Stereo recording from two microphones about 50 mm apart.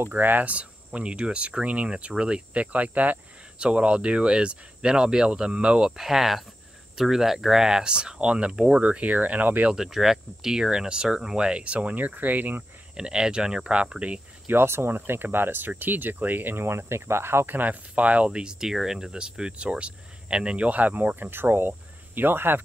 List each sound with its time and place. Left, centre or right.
0.1 s speech: right
3.5 s speech: right
9.8 s speech: centre; by 12.6 s right
12.9 s speech: centre
14.5 s speech: right
21.3 s speech: right